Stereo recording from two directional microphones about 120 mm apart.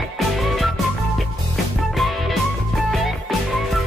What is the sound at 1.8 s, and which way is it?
Music, centre (ahead or behind).